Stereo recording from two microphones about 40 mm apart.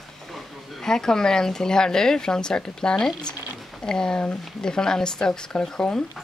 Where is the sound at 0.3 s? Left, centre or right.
Centre.